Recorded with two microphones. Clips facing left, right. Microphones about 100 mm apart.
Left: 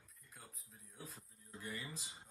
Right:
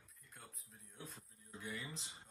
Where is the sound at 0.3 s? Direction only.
Centre (ahead or behind).